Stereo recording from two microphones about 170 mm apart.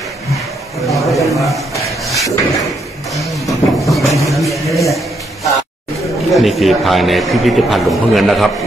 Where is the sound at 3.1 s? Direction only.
Centre (ahead or behind).